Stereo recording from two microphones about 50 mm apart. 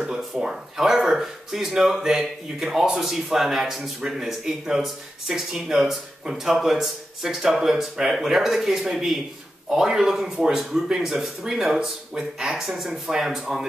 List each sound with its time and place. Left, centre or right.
0.0 s speech: centre